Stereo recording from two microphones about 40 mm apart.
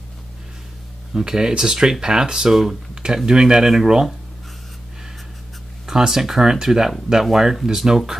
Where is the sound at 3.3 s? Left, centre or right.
Centre.